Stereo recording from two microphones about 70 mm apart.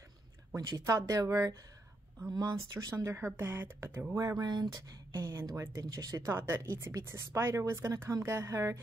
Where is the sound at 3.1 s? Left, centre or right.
Right.